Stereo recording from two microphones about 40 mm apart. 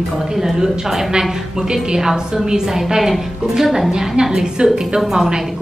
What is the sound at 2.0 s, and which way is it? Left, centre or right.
A woman's voice, centre.